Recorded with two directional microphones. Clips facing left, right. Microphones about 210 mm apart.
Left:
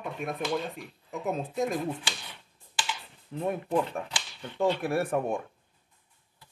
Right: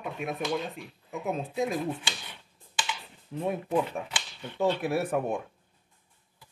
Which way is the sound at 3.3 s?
Centre (ahead or behind).